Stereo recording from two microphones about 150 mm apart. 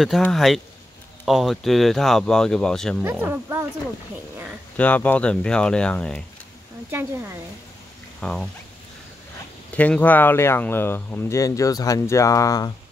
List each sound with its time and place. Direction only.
0.3 s speech: centre (ahead or behind)
3.0 s speech: 15° right (ahead or behind)
4.7 s speech: 10° left (ahead or behind)
6.9 s speech: 15° right (ahead or behind)
8.2 s speech: 5° left (ahead or behind)
9.8 s speech: 10° left (ahead or behind)